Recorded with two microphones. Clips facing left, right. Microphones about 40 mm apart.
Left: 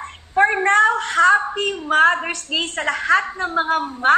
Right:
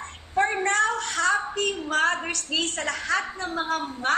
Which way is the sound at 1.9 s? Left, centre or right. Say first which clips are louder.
Left 11 dB; left.